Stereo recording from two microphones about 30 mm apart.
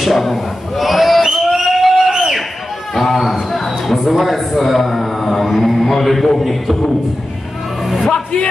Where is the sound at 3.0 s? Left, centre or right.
Centre.